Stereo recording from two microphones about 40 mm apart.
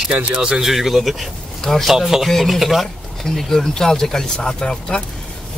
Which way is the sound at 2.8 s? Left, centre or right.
Centre.